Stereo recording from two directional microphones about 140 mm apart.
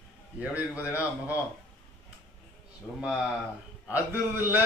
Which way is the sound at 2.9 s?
5° right (ahead or behind).